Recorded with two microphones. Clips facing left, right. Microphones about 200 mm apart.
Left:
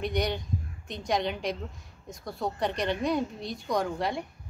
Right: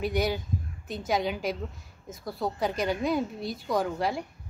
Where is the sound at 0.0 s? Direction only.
5° right (ahead or behind).